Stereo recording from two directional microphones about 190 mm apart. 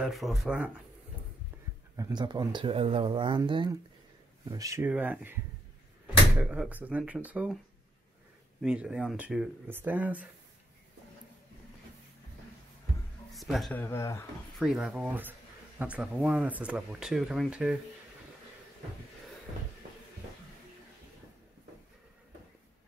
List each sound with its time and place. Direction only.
0.0 s speech: centre (ahead or behind)
2.0 s speech: 20° right (ahead or behind)
8.5 s speech: 5° right (ahead or behind)
13.3 s speech: centre (ahead or behind)
14.5 s speech: centre (ahead or behind)